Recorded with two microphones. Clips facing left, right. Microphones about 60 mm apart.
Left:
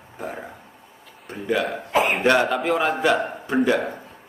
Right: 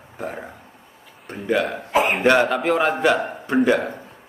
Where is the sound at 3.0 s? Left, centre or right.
Centre.